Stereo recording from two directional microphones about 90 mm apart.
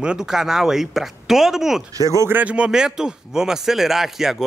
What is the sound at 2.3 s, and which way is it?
Speech, 15° right (ahead or behind).